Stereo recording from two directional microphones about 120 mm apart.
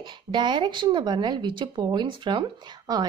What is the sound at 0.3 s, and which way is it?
Speech, 40° right (ahead or behind).